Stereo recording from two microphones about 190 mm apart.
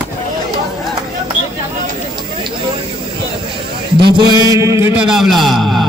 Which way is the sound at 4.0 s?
20° right (ahead or behind).